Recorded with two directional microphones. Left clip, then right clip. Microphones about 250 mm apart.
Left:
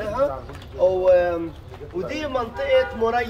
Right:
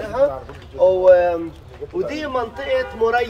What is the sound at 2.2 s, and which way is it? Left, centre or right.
Speech, right.